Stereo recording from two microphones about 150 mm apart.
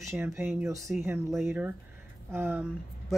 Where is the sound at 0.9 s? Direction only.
15° right (ahead or behind).